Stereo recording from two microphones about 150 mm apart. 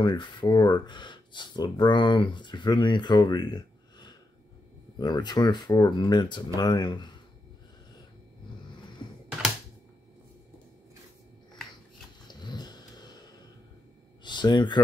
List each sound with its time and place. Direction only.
0.0 s speech: 30° left (ahead or behind)
12.3 s dog: 30° left (ahead or behind)
14.2 s speech: 30° left (ahead or behind)